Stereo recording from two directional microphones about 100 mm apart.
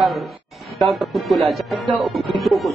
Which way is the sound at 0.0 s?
Centre (ahead or behind).